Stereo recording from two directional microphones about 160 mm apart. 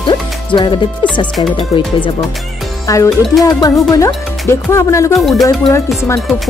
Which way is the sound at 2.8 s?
20° left (ahead or behind).